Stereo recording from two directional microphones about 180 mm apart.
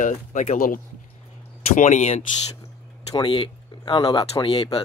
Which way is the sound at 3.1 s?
25° left (ahead or behind).